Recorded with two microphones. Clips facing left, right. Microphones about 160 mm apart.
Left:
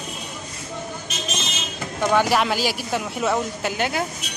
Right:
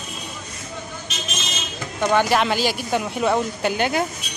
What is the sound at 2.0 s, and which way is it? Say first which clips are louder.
Speech: right 1 dB; 5° left (ahead or behind).